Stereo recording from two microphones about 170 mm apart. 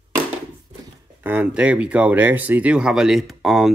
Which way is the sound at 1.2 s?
10° right (ahead or behind).